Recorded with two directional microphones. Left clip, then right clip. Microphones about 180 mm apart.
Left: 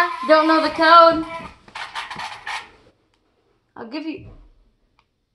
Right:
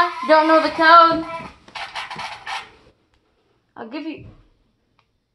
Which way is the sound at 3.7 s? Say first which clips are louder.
Left 1 dB; 50° left (ahead or behind).